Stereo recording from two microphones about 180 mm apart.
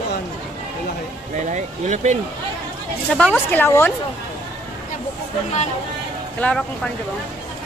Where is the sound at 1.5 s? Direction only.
40° right (ahead or behind).